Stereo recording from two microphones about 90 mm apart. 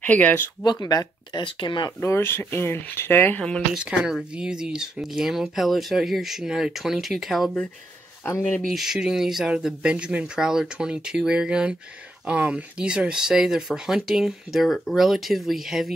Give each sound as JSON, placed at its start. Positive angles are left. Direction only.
{"t": 0.0, "sound": "speech", "side_deg": 15}
{"t": 0.7, "sound": "speech", "side_deg": 45}
{"t": 1.4, "sound": "speech", "side_deg": 60}
{"t": 2.0, "sound": "speech", "side_deg": 25}
{"t": 3.3, "sound": "speech", "side_deg": 10}
{"t": 3.7, "sound": "speech", "side_deg": -10}
{"t": 8.2, "sound": "speech", "side_deg": 30}
{"t": 8.5, "sound": "speech", "side_deg": 5}